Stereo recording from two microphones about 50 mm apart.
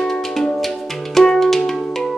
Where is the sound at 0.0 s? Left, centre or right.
Centre.